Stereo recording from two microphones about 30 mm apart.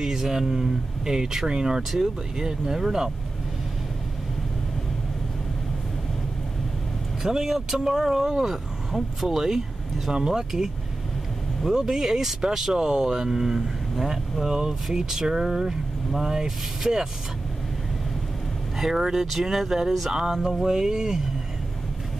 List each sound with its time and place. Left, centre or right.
0.0 s speech: centre
7.2 s speech: centre
18.8 s speech: centre